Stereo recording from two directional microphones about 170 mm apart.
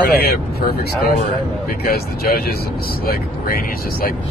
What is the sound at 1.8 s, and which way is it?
Speech, 65° left (ahead or behind).